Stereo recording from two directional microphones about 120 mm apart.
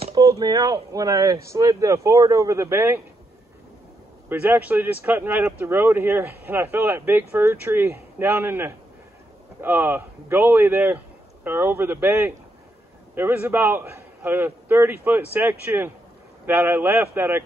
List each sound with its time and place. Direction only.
0.1 s speech: 30° right (ahead or behind)
4.3 s speech: 15° right (ahead or behind)